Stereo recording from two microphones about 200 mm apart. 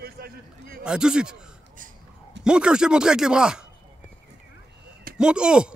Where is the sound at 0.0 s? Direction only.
50° right (ahead or behind).